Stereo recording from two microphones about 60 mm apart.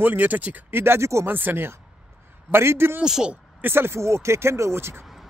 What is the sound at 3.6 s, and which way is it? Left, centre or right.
Speech, right.